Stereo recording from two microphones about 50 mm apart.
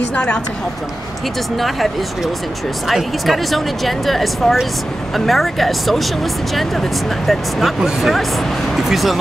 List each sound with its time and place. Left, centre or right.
0.1 s a woman's voice: centre
2.9 s speech: centre